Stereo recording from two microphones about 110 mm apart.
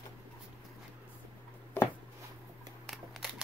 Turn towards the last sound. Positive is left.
turn(degrees=-5)  # may be behind; listen again after turning